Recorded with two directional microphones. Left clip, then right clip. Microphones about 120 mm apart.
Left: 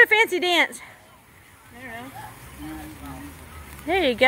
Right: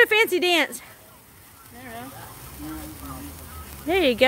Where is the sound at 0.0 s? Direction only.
20° right (ahead or behind).